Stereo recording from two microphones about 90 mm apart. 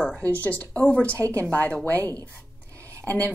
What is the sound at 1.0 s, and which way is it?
Speech, 30° right (ahead or behind).